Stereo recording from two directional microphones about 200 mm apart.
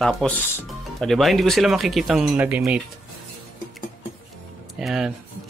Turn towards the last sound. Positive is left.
turn(degrees=-5)  # may be behind; listen again after turning